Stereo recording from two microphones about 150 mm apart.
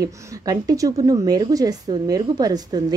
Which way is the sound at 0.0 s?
25° right (ahead or behind).